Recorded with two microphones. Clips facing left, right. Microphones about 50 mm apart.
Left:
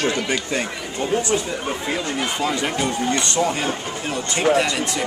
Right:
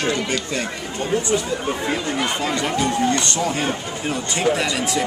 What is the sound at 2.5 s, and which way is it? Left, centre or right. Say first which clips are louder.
Speech: right 2 dB; centre.